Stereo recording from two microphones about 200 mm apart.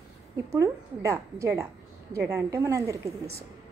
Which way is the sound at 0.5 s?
15° right (ahead or behind).